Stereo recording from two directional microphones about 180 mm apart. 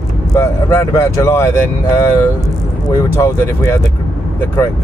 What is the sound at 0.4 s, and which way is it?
Speech, 15° left (ahead or behind).